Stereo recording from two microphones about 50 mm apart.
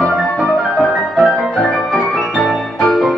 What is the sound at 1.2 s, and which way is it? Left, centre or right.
Music, centre.